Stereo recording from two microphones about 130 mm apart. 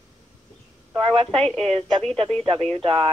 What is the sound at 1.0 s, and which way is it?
Speech, 50° right (ahead or behind).